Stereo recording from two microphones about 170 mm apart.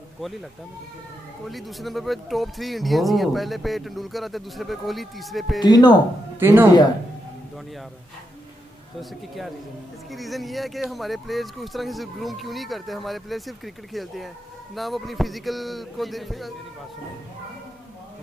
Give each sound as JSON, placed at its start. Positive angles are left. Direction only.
{"t": 1.5, "sound": "speech", "side_deg": 0}
{"t": 5.6, "sound": "speech", "side_deg": 25}
{"t": 6.4, "sound": "speech", "side_deg": -10}
{"t": 10.1, "sound": "speech", "side_deg": 0}